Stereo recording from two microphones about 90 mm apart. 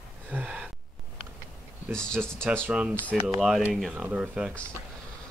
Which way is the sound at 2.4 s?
25° right (ahead or behind).